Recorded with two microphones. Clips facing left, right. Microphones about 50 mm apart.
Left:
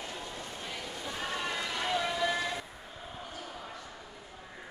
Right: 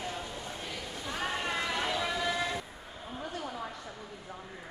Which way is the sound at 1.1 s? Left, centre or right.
Right.